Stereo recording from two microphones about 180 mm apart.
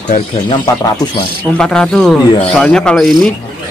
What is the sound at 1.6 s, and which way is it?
A man's voice, 5° left (ahead or behind).